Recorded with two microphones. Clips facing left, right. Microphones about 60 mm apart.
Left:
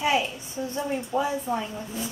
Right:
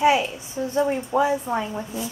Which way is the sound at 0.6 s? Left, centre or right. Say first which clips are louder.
Right 6 dB; right.